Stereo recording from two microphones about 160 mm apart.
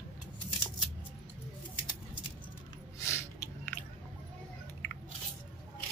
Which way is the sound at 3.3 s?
15° left (ahead or behind).